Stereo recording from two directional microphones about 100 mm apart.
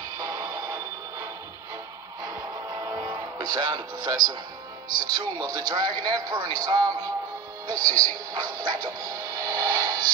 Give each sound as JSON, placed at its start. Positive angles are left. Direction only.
{"t": 0.2, "sound": "music", "side_deg": -35}
{"t": 2.2, "sound": "music", "side_deg": -45}
{"t": 4.9, "sound": "speech", "side_deg": -45}
{"t": 8.4, "sound": "music", "side_deg": -40}